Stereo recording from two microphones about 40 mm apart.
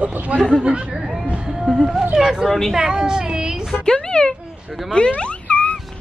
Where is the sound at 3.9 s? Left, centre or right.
Centre.